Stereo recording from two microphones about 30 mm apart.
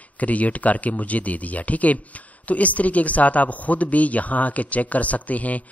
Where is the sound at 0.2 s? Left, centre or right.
Left.